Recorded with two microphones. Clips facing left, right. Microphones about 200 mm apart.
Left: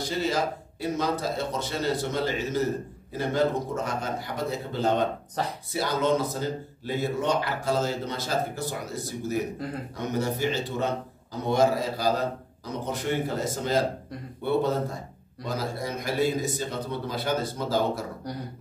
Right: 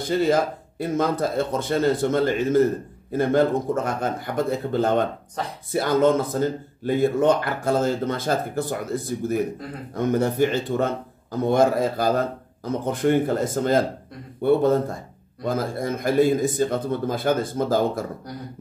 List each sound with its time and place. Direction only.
0.0 s a man's voice: 55° right (ahead or behind)